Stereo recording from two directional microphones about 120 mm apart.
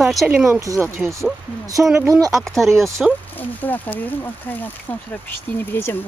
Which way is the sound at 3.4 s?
15° left (ahead or behind).